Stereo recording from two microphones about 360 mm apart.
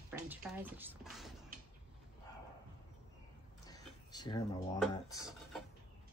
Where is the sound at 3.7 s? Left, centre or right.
Centre.